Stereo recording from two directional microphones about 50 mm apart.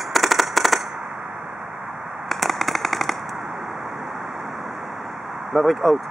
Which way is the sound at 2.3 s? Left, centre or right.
Centre.